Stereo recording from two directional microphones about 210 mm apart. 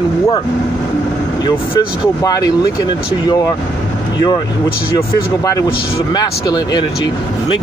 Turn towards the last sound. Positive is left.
turn(degrees=20)  # may be behind; listen again after turning